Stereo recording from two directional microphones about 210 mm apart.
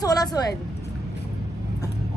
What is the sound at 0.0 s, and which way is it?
Speech, 20° left (ahead or behind).